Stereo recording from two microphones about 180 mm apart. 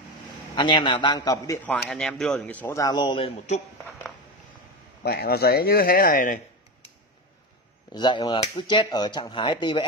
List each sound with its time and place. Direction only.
0.6 s speech: 25° left (ahead or behind)
1.7 s speech: 5° left (ahead or behind); by 3.6 s 35° left (ahead or behind)
5.0 s speech: 60° left (ahead or behind)
7.9 s speech: 25° left (ahead or behind)